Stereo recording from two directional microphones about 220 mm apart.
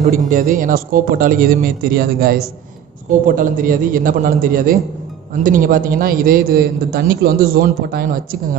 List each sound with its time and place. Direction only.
0.0 s a man's voice: 35° right (ahead or behind)